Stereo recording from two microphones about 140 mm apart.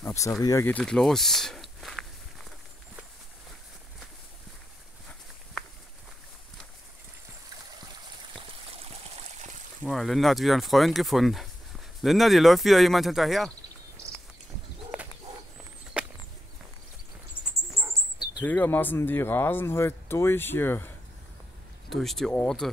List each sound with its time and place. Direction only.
0.0 s speech: 20° left (ahead or behind)
0.7 s speech: 5° left (ahead or behind)
9.8 s speech: centre (ahead or behind)
14.9 s a sound: 10° right (ahead or behind)
18.4 s speech: 10° left (ahead or behind)
21.8 s speech: centre (ahead or behind)